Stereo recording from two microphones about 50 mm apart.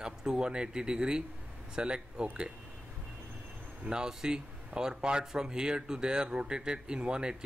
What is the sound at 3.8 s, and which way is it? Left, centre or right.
Speech, centre.